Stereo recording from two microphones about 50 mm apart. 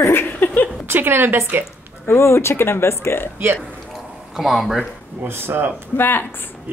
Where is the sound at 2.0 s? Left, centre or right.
Left.